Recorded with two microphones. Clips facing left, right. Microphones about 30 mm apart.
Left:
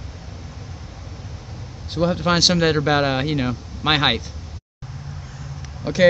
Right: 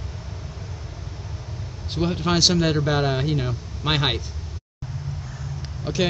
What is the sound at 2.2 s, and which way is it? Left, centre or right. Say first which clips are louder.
Speech: left 2 dB; left.